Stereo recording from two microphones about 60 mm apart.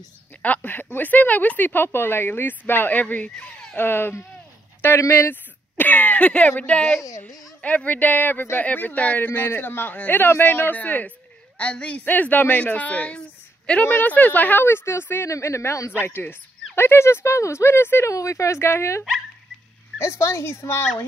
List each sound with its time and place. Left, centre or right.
0.4 s speech: left
3.7 s speech: left
4.8 s speech: left
5.1 s speech: left
15.2 s speech: left
16.0 s speech: left
18.1 s speech: left
20.1 s speech: left